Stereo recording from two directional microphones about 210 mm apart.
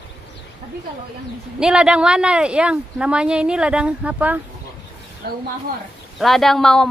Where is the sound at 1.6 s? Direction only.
5° right (ahead or behind).